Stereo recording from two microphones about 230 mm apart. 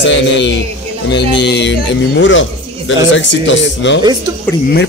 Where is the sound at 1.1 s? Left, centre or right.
Left.